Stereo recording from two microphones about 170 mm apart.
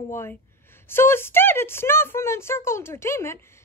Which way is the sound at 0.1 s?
15° left (ahead or behind).